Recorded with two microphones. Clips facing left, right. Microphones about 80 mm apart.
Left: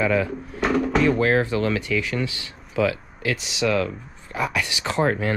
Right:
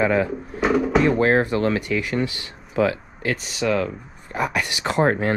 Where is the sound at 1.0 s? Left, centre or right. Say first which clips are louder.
Right 1 dB; right.